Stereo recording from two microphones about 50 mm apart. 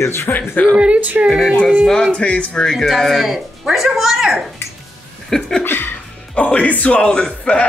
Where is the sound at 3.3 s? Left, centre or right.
Centre.